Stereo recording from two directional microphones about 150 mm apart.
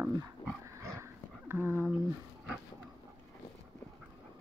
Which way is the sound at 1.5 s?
15° right (ahead or behind).